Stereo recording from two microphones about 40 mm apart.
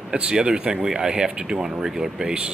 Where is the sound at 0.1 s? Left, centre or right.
Right.